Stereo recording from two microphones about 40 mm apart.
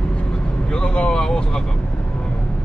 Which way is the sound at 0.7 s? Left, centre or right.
Left.